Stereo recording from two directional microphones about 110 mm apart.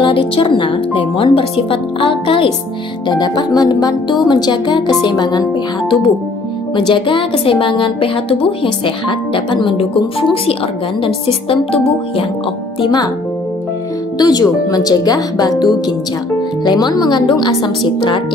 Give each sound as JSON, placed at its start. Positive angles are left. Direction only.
{"t": 0.0, "sound": "speech", "side_deg": 50}
{"t": 3.1, "sound": "a woman's voice", "side_deg": 40}
{"t": 12.8, "sound": "speech", "side_deg": 40}
{"t": 14.1, "sound": "a woman's voice", "side_deg": 35}